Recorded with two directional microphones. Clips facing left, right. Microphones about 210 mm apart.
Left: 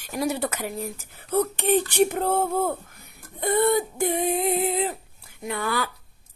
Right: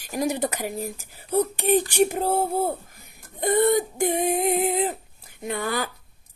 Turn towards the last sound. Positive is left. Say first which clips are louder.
# right 1 dB
turn(degrees=-45)  # may be behind; listen again after turning